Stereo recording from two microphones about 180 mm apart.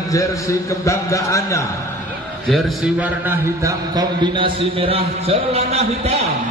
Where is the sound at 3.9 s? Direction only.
25° right (ahead or behind).